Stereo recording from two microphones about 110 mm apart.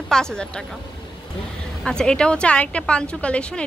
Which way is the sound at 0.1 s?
5° left (ahead or behind).